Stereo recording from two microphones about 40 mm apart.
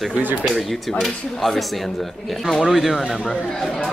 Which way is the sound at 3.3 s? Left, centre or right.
Centre.